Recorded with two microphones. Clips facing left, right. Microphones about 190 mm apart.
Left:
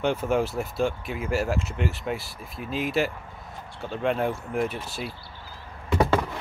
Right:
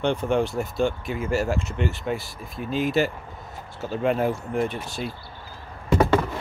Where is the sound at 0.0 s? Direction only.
5° left (ahead or behind).